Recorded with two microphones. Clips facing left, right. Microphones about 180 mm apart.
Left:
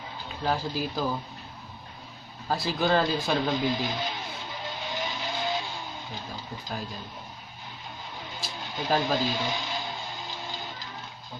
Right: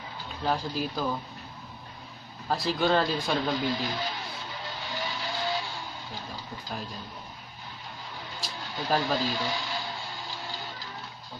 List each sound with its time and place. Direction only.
0.5 s speech: centre (ahead or behind)
2.4 s speech: centre (ahead or behind)
3.5 s speech: 20° left (ahead or behind)
4.6 s vehicle: 20° left (ahead or behind)
8.7 s speech: 20° left (ahead or behind)
10.3 s printer: 20° left (ahead or behind)